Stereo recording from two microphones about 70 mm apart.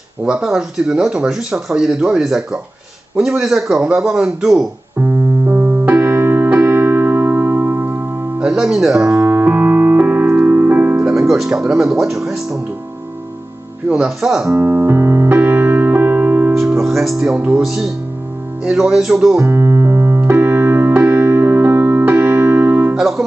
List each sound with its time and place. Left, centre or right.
0.2 s speech: centre
5.5 s music: right
8.4 s speech: centre
9.2 s piano: right
9.5 s music: right
11.1 s speech: centre
14.0 s speech: centre
14.4 s piano: right
15.2 s music: right
16.8 s speech: centre
19.4 s piano: right
22.1 s music: right
22.9 s music: centre